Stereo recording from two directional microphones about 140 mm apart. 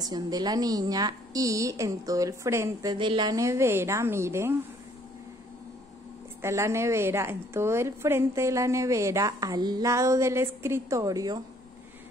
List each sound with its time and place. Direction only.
0.0 s a woman's voice: 30° right (ahead or behind)
6.4 s a woman's voice: 20° right (ahead or behind)